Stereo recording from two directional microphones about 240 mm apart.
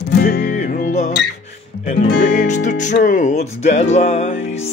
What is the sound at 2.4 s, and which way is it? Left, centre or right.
Music, left.